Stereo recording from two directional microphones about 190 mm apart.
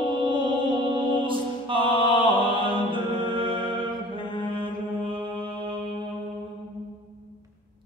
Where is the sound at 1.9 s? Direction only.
25° left (ahead or behind).